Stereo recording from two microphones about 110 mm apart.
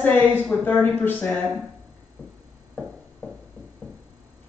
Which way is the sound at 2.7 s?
Centre (ahead or behind).